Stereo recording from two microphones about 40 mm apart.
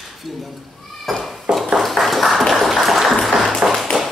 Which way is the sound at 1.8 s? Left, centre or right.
Centre.